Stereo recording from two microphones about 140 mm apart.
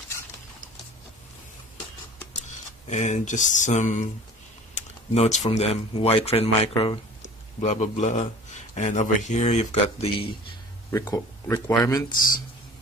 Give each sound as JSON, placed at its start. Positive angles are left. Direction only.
{"t": 2.9, "sound": "speech", "side_deg": 60}
{"t": 7.2, "sound": "speech", "side_deg": 55}
{"t": 10.9, "sound": "speech", "side_deg": 25}